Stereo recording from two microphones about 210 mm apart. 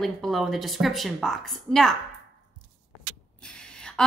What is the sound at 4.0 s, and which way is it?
Speech, 5° left (ahead or behind).